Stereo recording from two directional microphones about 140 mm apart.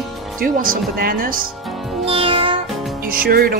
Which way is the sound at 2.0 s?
40° right (ahead or behind).